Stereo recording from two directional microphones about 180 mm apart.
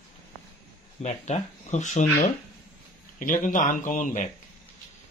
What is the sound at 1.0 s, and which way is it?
Speech, 40° left (ahead or behind).